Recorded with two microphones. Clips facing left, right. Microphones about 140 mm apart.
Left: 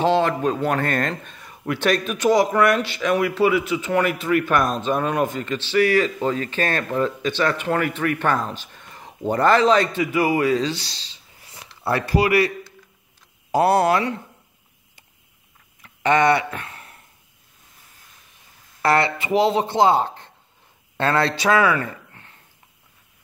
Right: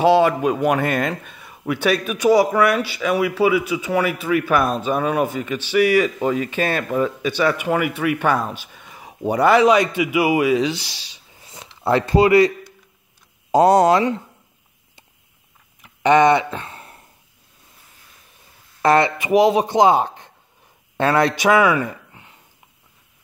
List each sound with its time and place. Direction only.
0.0 s a man's voice: 10° right (ahead or behind)
15.8 s a sound: 20° right (ahead or behind)
18.8 s a man's voice: 20° right (ahead or behind)